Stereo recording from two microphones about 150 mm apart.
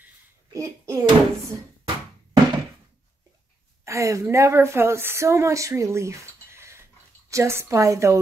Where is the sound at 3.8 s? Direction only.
20° right (ahead or behind).